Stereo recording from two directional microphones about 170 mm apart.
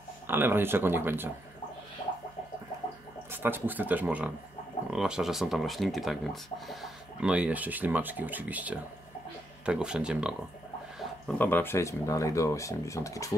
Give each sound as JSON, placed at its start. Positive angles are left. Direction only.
{"t": 0.3, "sound": "speech", "side_deg": -15}
{"t": 2.0, "sound": "a sound", "side_deg": 25}
{"t": 3.3, "sound": "speech", "side_deg": -10}
{"t": 11.3, "sound": "speech", "side_deg": 10}